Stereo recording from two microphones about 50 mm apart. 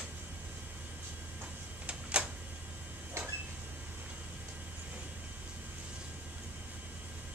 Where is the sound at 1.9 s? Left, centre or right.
Right.